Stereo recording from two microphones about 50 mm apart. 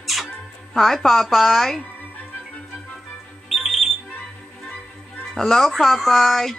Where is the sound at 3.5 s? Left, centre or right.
Centre.